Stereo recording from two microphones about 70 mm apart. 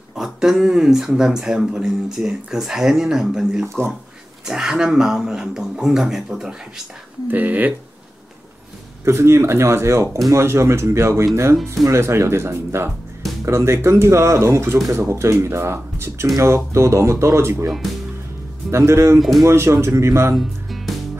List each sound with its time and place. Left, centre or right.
0.1 s speech: centre
3.6 s speech: right
4.5 s speech: centre
7.2 s speech: right
9.0 s speech: right
19.1 s speech: centre
19.4 s speech: right
20.3 s music: centre